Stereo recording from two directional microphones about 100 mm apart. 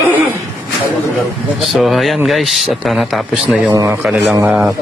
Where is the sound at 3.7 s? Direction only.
40° right (ahead or behind).